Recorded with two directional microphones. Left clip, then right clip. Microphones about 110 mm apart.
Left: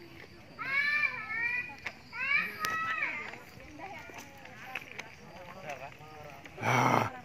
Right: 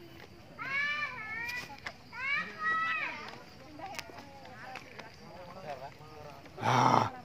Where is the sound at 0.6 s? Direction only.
15° left (ahead or behind).